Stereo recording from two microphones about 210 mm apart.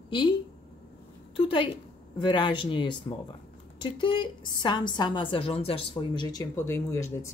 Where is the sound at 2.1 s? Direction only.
20° left (ahead or behind).